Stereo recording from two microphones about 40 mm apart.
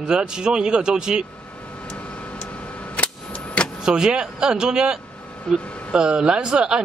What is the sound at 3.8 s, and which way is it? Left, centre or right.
A woman's voice, right.